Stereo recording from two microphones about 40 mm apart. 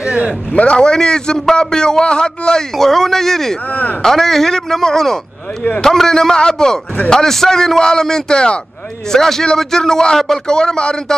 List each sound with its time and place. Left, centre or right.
0.0 s a sound: right
0.6 s a man's voice: left
2.8 s a man's voice: centre
9.1 s a man's voice: centre